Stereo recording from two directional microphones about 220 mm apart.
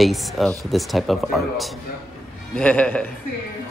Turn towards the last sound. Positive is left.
turn(degrees=5)  # may be behind; listen again after turning